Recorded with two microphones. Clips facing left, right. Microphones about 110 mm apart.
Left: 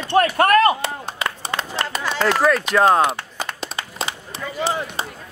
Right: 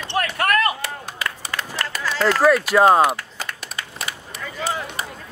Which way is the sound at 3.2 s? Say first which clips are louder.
Left 4 dB; 25° left (ahead or behind).